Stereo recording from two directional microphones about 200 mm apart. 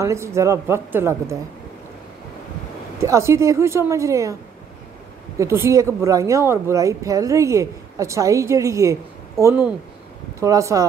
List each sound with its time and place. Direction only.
0.0 s speech: 15° right (ahead or behind)
3.0 s speech: 15° right (ahead or behind)
5.4 s speech: 15° right (ahead or behind)